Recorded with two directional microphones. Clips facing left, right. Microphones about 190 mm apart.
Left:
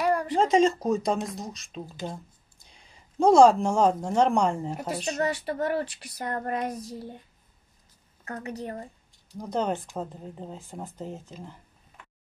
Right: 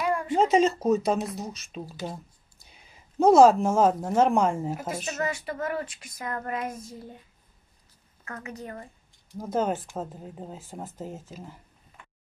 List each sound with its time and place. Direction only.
0.0 s a sound: 40° left (ahead or behind)
0.4 s speech: 5° right (ahead or behind)
4.8 s speech: 35° left (ahead or behind)
8.3 s speech: 35° left (ahead or behind)
9.4 s speech: 5° right (ahead or behind)